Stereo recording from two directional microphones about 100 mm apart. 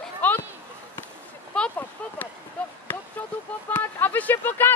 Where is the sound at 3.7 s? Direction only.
20° left (ahead or behind).